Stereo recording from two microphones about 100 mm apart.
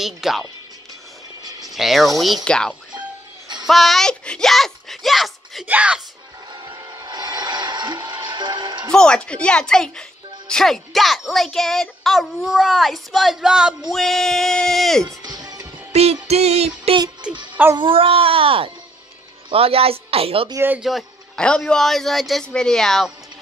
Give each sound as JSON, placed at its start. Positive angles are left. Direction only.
{"t": 0.0, "sound": "speech", "side_deg": -5}
{"t": 1.7, "sound": "speech", "side_deg": 0}
{"t": 5.7, "sound": "speech", "side_deg": -10}
{"t": 6.5, "sound": "vehicle", "side_deg": -45}
{"t": 8.9, "sound": "speech", "side_deg": 10}
{"t": 15.0, "sound": "music", "side_deg": -40}
{"t": 15.9, "sound": "music", "side_deg": -90}
{"t": 17.7, "sound": "speech", "side_deg": -60}
{"t": 20.5, "sound": "speech", "side_deg": -20}
{"t": 21.4, "sound": "speech", "side_deg": 10}